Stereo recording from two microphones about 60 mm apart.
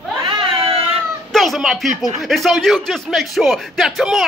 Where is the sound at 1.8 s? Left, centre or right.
Centre.